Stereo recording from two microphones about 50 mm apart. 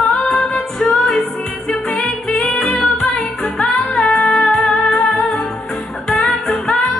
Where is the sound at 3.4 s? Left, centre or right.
Centre.